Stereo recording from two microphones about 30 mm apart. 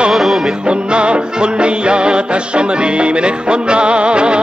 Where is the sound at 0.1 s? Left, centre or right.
Centre.